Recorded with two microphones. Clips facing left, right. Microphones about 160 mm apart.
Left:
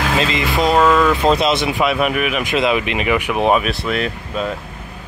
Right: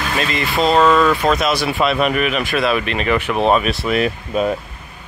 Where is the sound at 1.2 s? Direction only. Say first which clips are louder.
Left 2 dB; 25° left (ahead or behind); by 2.4 s 5° left (ahead or behind).